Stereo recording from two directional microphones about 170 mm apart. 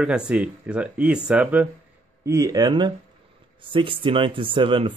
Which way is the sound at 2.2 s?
20° right (ahead or behind).